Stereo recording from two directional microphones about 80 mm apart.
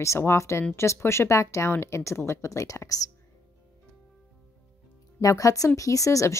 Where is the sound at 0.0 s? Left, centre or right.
Left.